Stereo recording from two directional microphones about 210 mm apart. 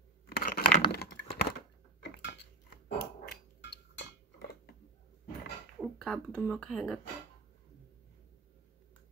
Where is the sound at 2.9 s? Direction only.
50° left (ahead or behind).